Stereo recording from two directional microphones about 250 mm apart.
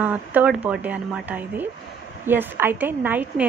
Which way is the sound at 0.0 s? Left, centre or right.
Centre.